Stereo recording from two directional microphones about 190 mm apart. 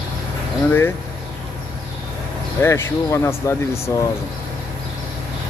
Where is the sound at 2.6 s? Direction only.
15° left (ahead or behind).